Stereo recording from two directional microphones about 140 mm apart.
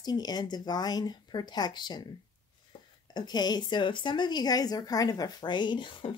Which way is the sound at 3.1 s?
30° left (ahead or behind).